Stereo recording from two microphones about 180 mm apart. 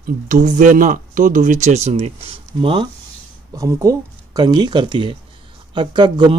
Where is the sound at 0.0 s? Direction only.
45° right (ahead or behind); by 2.9 s 30° right (ahead or behind).